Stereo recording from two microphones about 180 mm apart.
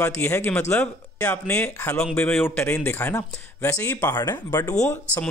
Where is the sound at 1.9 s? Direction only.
5° left (ahead or behind).